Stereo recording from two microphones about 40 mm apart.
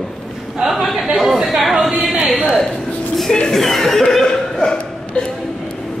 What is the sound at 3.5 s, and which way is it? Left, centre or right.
Chuckle, centre.